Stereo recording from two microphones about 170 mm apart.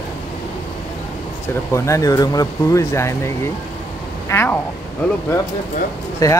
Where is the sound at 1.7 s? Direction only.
20° left (ahead or behind).